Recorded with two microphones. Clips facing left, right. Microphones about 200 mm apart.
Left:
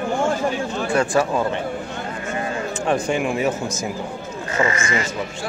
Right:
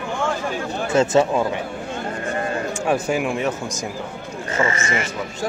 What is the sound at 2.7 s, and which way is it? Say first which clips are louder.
Speech: left 1 dB; 5° right (ahead or behind).